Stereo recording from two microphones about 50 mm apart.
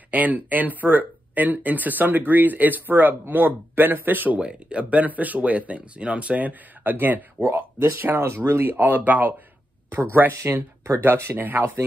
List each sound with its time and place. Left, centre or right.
0.1 s speech: right
4.4 s speech: right
7.4 s speech: left
7.9 s speech: right
10.3 s speech: right
11.3 s speech: right